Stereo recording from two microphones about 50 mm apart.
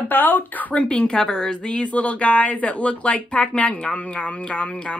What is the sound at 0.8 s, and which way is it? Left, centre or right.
Speech, centre.